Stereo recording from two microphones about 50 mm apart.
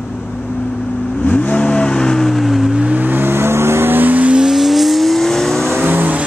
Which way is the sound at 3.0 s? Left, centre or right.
Right.